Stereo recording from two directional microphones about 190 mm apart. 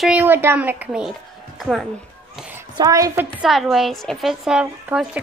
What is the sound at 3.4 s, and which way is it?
A woman's voice, centre (ahead or behind).